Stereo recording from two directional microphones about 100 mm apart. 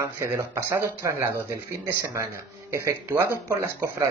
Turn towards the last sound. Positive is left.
turn(degrees=-30)  # may be behind; listen again after turning